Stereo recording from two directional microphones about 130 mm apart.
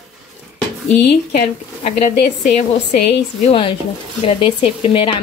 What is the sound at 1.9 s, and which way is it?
Speech, 65° left (ahead or behind).